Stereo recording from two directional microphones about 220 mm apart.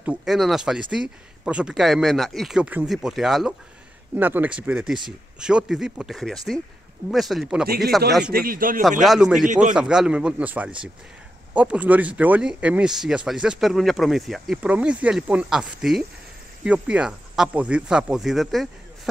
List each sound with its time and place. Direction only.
0.0 s speech: 5° right (ahead or behind)
7.6 s a man's voice: 45° right (ahead or behind)
9.0 s speech: centre (ahead or behind)
9.5 s a man's voice: 35° right (ahead or behind)
9.8 s speech: 5° right (ahead or behind)